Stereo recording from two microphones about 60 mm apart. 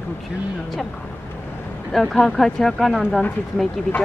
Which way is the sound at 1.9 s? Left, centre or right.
Centre.